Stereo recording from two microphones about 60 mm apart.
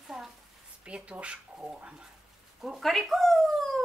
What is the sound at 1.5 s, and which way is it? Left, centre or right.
Speech, centre.